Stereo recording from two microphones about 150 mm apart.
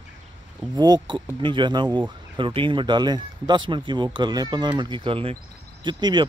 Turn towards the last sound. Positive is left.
turn(degrees=-30)  # may be behind; listen again after turning